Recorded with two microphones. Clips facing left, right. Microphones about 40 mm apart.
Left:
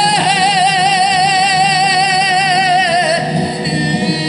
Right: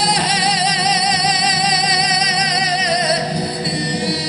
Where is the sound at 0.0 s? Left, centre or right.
Left.